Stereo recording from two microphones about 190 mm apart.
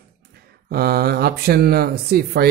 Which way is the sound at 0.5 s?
55° right (ahead or behind).